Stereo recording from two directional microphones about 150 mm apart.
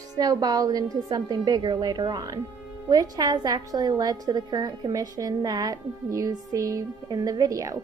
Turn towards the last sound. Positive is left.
turn(degrees=-20)  # may be behind; listen again after turning